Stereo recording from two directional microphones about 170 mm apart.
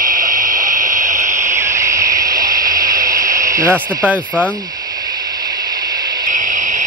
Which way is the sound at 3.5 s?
15° right (ahead or behind).